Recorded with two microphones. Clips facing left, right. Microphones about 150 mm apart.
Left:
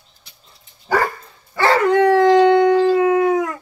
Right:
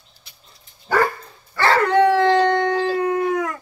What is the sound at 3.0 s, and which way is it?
Dog, 90° left.